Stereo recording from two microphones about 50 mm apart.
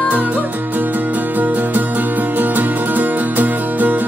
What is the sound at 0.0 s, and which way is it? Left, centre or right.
Music, right.